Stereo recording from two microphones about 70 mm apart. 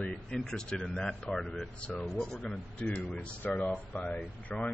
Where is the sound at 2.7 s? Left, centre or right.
Left.